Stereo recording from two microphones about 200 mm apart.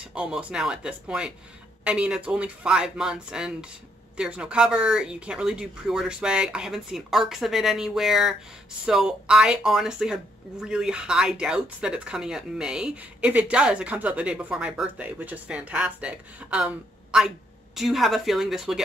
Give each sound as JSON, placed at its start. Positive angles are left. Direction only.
{"t": 0.1, "sound": "speech", "side_deg": -5}